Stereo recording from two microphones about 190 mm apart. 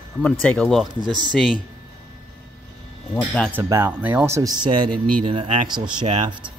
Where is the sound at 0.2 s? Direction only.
5° left (ahead or behind).